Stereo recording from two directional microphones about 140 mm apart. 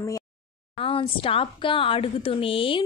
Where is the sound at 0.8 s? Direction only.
40° left (ahead or behind).